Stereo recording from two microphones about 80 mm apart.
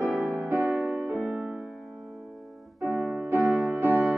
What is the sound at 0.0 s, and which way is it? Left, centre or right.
Music, centre.